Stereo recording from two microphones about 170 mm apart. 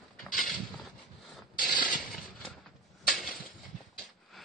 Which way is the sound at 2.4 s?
Centre (ahead or behind).